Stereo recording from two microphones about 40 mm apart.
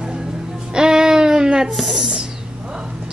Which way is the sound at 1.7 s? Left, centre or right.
Centre.